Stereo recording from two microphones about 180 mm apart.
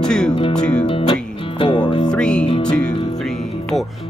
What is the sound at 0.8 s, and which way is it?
Music, 30° left (ahead or behind).